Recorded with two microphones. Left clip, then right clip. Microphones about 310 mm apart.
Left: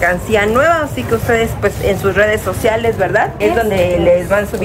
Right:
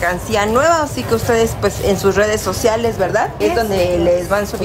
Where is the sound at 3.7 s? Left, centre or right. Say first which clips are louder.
Left 2 dB; right.